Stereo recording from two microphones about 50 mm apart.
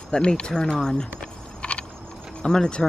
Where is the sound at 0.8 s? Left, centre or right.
Centre.